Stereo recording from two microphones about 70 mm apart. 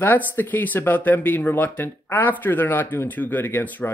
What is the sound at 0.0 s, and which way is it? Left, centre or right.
Speech, left.